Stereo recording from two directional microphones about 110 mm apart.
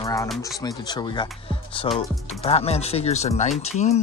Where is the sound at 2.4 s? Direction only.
65° left (ahead or behind); by 3.9 s 80° left.